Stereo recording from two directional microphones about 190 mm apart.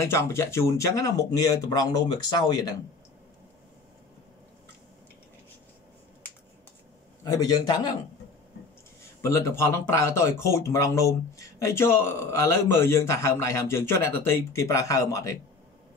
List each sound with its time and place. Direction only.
0.0 s speech: 15° left (ahead or behind)
7.2 s speech: 20° left (ahead or behind)
9.2 s speech: 15° left (ahead or behind)